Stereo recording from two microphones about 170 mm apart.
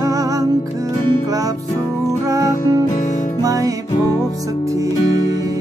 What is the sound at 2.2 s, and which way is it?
Music, 20° right (ahead or behind).